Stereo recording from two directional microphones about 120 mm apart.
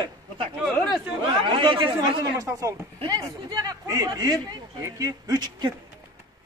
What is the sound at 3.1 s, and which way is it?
Speech, 30° right (ahead or behind).